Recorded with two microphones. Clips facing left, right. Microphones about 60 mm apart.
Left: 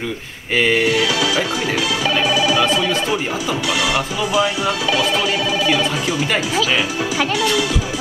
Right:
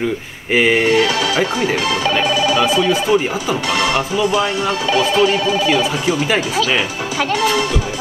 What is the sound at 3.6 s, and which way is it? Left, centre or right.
Music, right.